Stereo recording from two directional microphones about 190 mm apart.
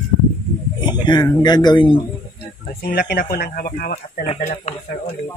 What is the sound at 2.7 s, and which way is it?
Speech, 55° left (ahead or behind).